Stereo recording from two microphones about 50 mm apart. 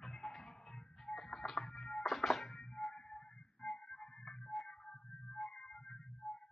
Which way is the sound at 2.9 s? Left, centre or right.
Centre.